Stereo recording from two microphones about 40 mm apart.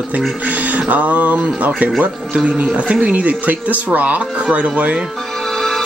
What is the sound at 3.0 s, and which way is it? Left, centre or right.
Speech, right.